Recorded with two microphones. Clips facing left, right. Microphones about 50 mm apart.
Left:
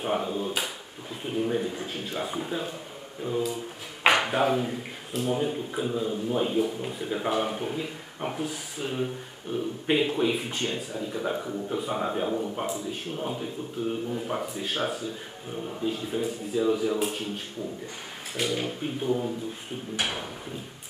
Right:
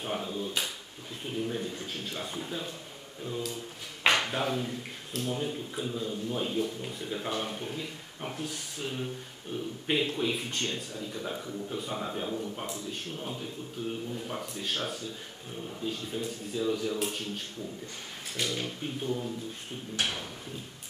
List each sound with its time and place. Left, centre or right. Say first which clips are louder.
0.0 s a man's voice: left 6 dB; centre
4.0 s speech: left 5 dB; centre
8.5 s a man's voice: left 4 dB; centre
12.6 s speech: left 5 dB; centre
14.4 s speech: left 5 dB; centre
18.3 s speech: left 5 dB; centre